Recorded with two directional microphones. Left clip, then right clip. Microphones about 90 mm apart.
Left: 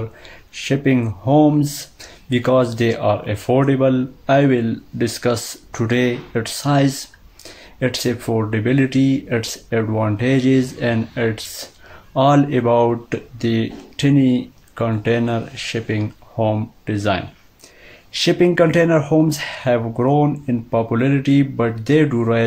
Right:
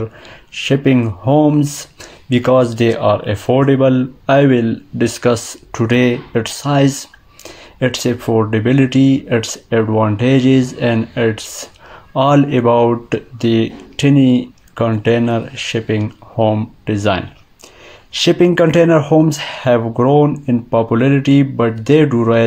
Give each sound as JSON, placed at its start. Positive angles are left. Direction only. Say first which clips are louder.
{"t": 0.0, "sound": "speech", "louder": "right 6 dB", "side_deg": -35}
{"t": 16.9, "sound": "speech", "louder": "right 4 dB", "side_deg": -40}